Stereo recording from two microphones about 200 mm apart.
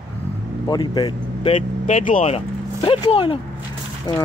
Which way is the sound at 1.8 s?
40° left (ahead or behind).